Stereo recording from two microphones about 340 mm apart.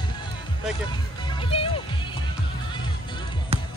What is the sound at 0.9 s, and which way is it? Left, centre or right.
Music, centre.